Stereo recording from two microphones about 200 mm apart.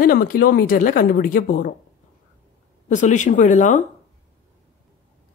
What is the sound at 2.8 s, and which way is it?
Speech, 40° left (ahead or behind).